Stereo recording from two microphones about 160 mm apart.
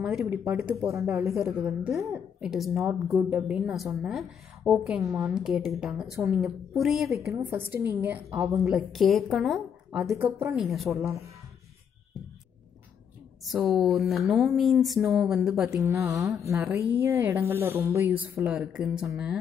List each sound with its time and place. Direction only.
0.2 s a woman's voice: 15° right (ahead or behind)
1.3 s speech: centre (ahead or behind)
2.0 s speech: 20° right (ahead or behind)
2.4 s speech: 5° right (ahead or behind)
6.1 s a woman's voice: 15° right (ahead or behind)
6.4 s speech: centre (ahead or behind)
7.3 s a woman's voice: 15° right (ahead or behind)
8.6 s speech: centre (ahead or behind)
10.1 s a woman's voice: 15° right (ahead or behind)
10.6 s speech: centre (ahead or behind)
13.5 s speech: centre (ahead or behind)
15.8 s a woman's voice: 20° right (ahead or behind)